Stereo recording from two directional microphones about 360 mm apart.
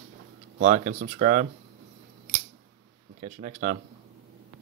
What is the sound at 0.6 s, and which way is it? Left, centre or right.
Speech, centre.